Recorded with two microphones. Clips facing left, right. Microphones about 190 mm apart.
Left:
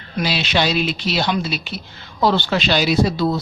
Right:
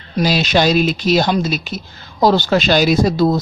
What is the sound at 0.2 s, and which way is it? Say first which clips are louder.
Speech: right 5 dB; 40° right (ahead or behind).